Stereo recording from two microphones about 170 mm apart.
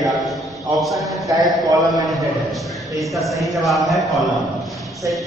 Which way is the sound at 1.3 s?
20° right (ahead or behind).